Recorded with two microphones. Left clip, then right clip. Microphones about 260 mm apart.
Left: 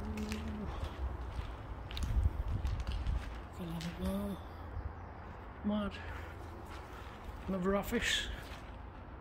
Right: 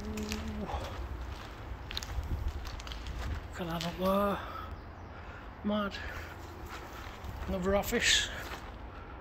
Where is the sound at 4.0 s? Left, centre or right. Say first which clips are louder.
Right 14 dB; centre.